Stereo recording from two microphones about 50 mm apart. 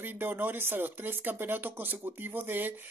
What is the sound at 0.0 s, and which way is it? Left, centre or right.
Speech, right.